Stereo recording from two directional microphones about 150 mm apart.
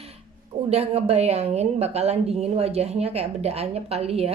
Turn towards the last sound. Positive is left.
turn(degrees=-45)  # may be behind; listen again after turning